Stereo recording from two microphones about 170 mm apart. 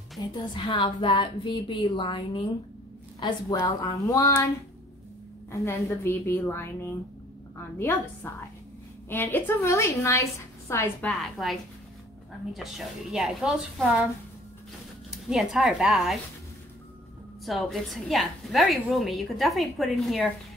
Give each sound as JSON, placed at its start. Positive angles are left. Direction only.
{"t": 0.2, "sound": "a woman's voice", "side_deg": 30}
{"t": 5.5, "sound": "a woman's voice", "side_deg": 20}
{"t": 11.1, "sound": "a woman's voice", "side_deg": 0}
{"t": 12.5, "sound": "a woman's voice", "side_deg": 0}
{"t": 15.0, "sound": "a woman's voice", "side_deg": 0}
{"t": 17.5, "sound": "a woman's voice", "side_deg": 0}